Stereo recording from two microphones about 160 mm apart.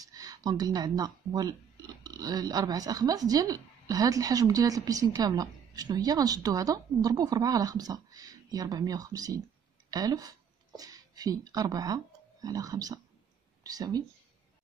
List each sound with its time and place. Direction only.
0.0 s speech: 25° right (ahead or behind)